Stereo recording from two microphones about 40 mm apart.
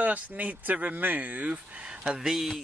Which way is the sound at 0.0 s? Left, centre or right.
Right.